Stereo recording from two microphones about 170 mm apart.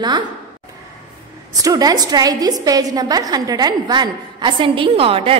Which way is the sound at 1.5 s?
20° right (ahead or behind).